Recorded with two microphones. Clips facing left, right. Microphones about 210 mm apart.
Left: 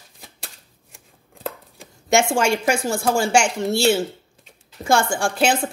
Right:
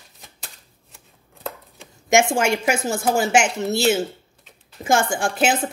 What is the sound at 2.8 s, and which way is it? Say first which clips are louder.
Speech: even; 20° right (ahead or behind).